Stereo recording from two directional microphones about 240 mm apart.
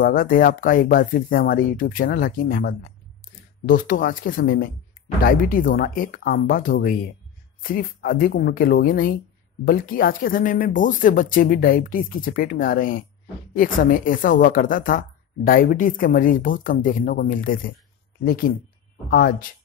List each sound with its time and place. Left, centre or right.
0.0 s a woman's voice: left